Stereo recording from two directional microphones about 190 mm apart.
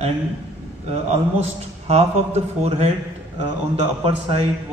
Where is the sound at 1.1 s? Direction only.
35° right (ahead or behind).